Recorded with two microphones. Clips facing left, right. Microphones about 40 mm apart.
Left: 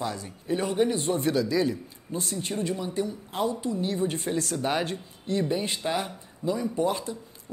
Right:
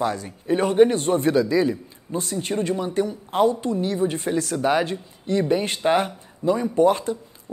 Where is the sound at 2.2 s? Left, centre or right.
Right.